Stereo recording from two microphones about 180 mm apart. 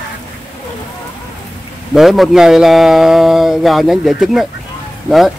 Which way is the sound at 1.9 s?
Centre (ahead or behind).